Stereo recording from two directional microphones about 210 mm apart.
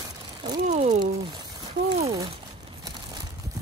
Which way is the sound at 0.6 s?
35° right (ahead or behind).